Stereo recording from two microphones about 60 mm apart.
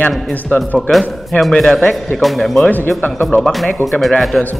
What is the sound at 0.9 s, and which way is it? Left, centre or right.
Speech, left.